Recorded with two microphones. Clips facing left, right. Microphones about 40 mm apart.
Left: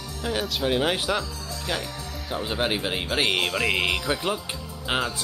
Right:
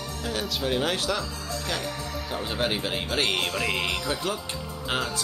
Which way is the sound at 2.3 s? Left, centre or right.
Centre.